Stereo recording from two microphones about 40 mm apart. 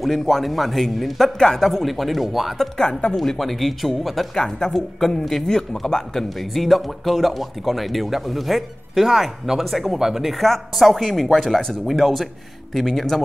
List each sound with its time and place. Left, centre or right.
0.0 s speech: centre
2.8 s a woman's voice: left
3.2 s speech: centre
4.4 s speech: centre